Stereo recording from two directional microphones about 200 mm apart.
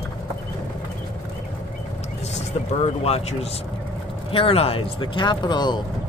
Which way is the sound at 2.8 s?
30° left (ahead or behind).